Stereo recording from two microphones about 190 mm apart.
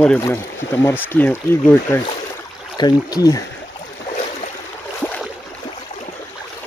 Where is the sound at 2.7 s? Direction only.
20° left (ahead or behind).